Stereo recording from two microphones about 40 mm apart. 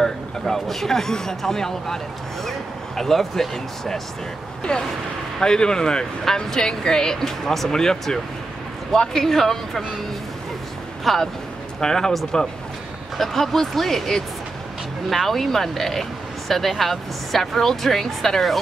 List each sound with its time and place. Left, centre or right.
0.0 s speech: centre
3.0 s speech: centre
4.7 s speech: centre
11.1 s speech: centre
11.8 s speech: centre